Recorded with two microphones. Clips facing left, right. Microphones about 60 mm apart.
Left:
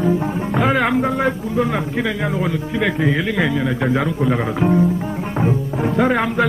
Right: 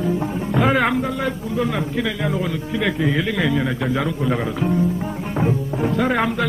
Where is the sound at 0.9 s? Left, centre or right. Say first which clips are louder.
Left 4 dB; left.